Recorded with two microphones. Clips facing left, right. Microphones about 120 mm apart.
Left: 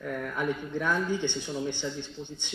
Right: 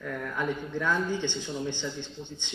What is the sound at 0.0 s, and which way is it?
Speech, 15° left (ahead or behind).